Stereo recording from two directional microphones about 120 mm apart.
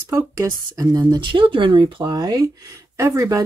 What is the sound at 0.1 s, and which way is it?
Speech, 25° right (ahead or behind).